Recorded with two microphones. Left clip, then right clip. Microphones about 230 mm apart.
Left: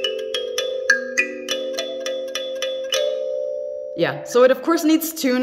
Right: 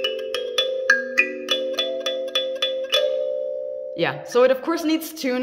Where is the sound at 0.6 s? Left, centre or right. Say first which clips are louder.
Right 1 dB; centre.